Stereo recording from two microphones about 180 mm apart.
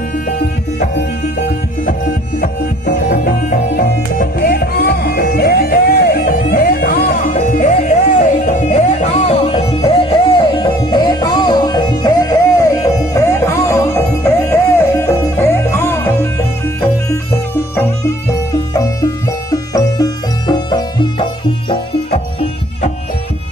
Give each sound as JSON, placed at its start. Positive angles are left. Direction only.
{"t": 2.4, "sound": "music", "side_deg": 55}
{"t": 18.5, "sound": "music", "side_deg": 20}